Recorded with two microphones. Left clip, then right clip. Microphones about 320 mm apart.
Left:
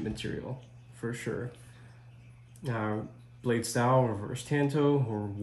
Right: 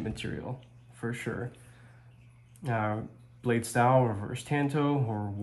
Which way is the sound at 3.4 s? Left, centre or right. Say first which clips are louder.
Right 2 dB; centre.